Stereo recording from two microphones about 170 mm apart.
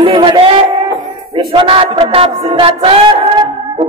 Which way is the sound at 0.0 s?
30° right (ahead or behind).